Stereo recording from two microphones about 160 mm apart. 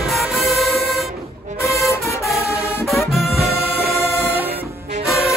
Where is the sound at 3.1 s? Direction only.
Centre (ahead or behind).